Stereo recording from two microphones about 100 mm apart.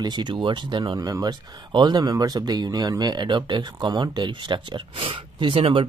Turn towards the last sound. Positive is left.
turn(degrees=-70)  # may be behind; listen again after turning